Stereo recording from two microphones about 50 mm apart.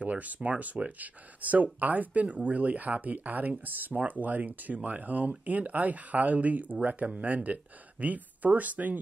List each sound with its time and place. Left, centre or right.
0.0 s speech: right